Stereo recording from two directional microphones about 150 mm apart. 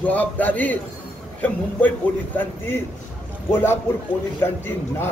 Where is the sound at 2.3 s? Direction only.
15° left (ahead or behind).